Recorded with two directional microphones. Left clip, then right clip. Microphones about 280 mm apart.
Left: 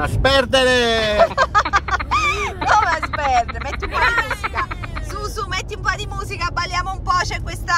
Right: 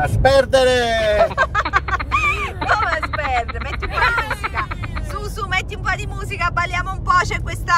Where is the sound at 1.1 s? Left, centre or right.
Left.